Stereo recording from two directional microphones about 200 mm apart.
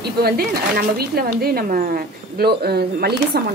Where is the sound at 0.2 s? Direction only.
50° right (ahead or behind).